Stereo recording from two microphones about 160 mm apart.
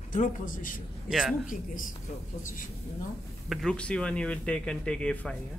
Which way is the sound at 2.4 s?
55° left (ahead or behind).